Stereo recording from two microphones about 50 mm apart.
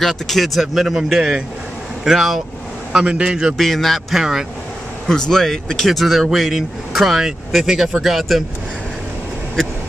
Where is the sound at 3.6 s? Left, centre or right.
Centre.